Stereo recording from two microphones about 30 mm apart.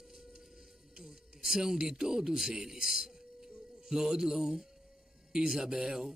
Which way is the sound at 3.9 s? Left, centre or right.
Centre.